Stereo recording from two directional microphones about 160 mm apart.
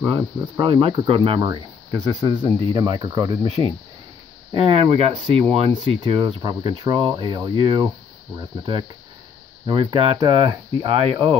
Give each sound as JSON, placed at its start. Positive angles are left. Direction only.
{"t": 0.0, "sound": "speech", "side_deg": -30}
{"t": 1.4, "sound": "speech", "side_deg": -25}